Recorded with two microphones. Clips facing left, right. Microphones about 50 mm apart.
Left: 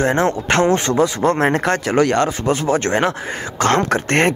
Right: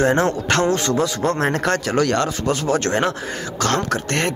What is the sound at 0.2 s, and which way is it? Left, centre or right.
Speech, centre.